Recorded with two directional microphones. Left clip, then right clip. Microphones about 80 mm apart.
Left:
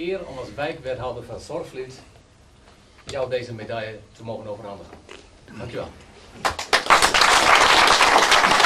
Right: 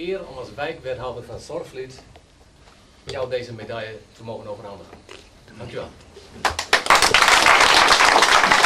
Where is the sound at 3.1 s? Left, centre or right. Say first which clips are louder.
Even; centre.